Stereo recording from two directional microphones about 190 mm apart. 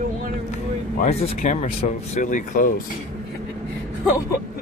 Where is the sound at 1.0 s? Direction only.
35° left (ahead or behind).